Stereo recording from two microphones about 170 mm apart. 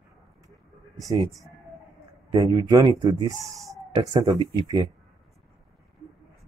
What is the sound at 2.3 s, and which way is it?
Speech, 20° right (ahead or behind).